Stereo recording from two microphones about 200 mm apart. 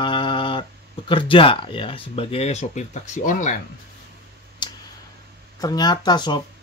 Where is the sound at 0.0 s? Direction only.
25° left (ahead or behind).